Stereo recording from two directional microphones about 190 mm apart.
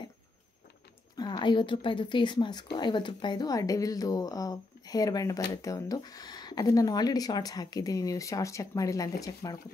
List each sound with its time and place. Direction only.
1.1 s a woman's voice: 20° left (ahead or behind)